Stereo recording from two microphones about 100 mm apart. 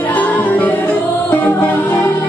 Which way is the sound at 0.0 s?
15° left (ahead or behind).